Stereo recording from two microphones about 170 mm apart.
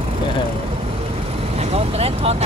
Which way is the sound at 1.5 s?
40° right (ahead or behind).